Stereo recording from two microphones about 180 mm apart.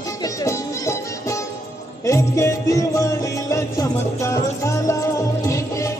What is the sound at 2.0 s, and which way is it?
Music, 15° left (ahead or behind).